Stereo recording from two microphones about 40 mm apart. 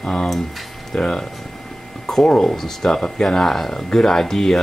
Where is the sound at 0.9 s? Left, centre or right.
Centre.